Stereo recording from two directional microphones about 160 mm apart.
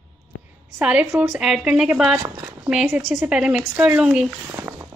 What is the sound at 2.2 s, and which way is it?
Speech, 15° right (ahead or behind).